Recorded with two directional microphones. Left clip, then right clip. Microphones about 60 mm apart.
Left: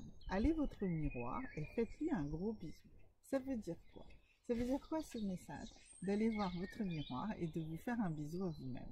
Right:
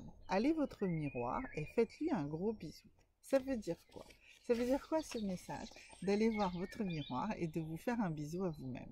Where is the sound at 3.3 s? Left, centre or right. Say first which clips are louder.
Right 6 dB; right.